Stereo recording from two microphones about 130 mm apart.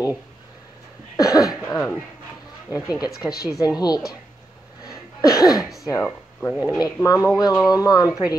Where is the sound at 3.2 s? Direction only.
25° left (ahead or behind).